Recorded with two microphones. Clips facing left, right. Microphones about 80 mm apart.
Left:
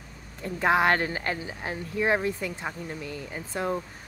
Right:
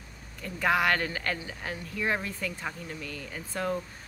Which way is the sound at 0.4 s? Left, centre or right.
Left.